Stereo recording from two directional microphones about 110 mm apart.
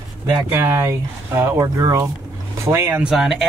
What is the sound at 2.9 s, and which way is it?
Speech, 5° right (ahead or behind).